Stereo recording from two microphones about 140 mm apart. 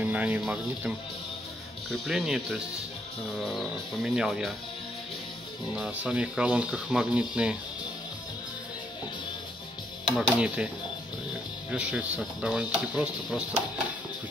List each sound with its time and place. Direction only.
0.0 s speech: 10° right (ahead or behind)
5.8 s speech: 5° right (ahead or behind)
10.1 s speech: 5° right (ahead or behind)
11.7 s speech: 10° right (ahead or behind)